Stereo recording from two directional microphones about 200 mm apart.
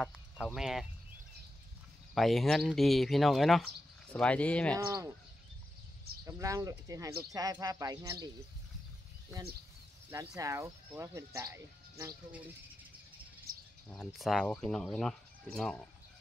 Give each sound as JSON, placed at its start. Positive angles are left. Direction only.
{"t": 0.6, "sound": "speech", "side_deg": 0}
{"t": 2.1, "sound": "speech", "side_deg": 0}
{"t": 4.7, "sound": "speech", "side_deg": -15}
{"t": 6.2, "sound": "speech", "side_deg": -15}
{"t": 10.1, "sound": "speech", "side_deg": -15}
{"t": 13.5, "sound": "bird", "side_deg": -45}
{"t": 13.8, "sound": "speech", "side_deg": 0}